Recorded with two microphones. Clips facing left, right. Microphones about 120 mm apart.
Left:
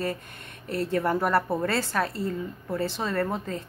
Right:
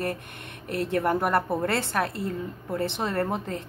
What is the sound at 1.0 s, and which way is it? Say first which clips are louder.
Speech: even; 20° right (ahead or behind).